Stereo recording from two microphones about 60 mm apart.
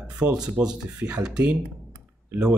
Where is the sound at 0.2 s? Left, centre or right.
Centre.